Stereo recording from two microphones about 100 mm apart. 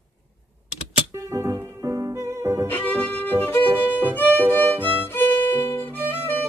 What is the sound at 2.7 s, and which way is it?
Music, 20° left (ahead or behind).